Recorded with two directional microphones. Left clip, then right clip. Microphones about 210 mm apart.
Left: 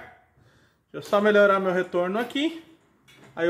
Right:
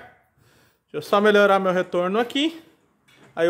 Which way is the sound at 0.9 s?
55° right (ahead or behind).